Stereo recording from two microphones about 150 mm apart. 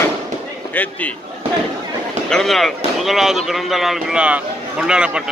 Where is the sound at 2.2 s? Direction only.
5° left (ahead or behind).